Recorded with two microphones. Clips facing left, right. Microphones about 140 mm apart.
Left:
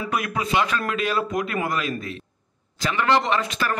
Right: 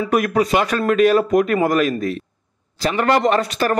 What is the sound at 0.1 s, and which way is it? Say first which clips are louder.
A man's voice: right 7 dB; 40° right (ahead or behind).